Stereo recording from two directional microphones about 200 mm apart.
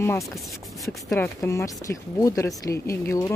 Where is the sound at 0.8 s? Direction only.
Centre (ahead or behind).